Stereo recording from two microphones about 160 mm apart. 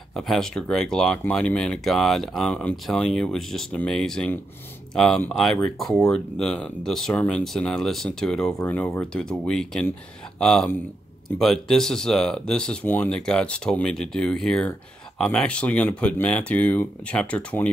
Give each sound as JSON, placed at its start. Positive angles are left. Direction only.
{"t": 0.1, "sound": "speech", "side_deg": 0}